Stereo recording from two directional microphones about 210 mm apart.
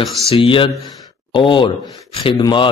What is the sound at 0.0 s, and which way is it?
Speech, centre (ahead or behind).